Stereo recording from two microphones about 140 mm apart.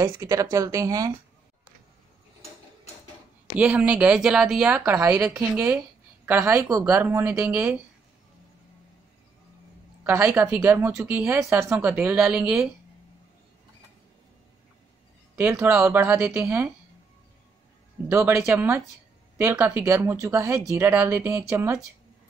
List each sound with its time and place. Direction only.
0.0 s speech: 20° right (ahead or behind)
3.5 s a woman's voice: 10° right (ahead or behind)
10.0 s speech: 15° right (ahead or behind)
15.3 s speech: 15° right (ahead or behind)
18.1 s speech: 20° right (ahead or behind)